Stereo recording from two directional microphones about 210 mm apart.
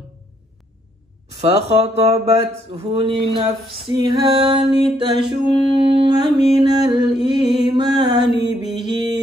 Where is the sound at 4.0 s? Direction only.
20° right (ahead or behind).